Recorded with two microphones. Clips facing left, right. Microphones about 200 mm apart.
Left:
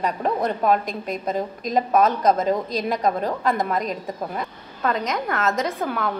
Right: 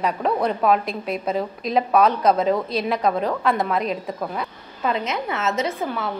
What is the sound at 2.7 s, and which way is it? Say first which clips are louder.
Speech: right 1 dB; 40° left (ahead or behind).